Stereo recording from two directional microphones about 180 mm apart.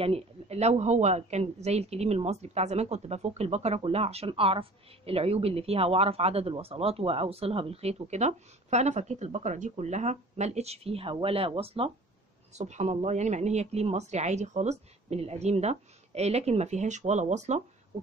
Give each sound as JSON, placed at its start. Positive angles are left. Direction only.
{"t": 0.0, "sound": "speech", "side_deg": -35}